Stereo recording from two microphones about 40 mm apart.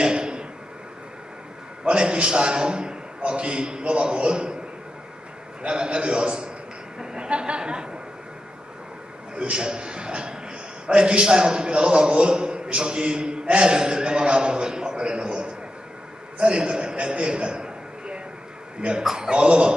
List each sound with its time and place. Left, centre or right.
0.0 s a sound: right
1.9 s a man's voice: right
5.6 s a man's voice: right
9.3 s a man's voice: right
16.3 s a sound: right
18.8 s a man's voice: right